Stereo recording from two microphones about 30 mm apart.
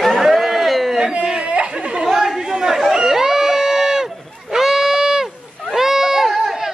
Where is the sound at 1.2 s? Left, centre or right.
Right.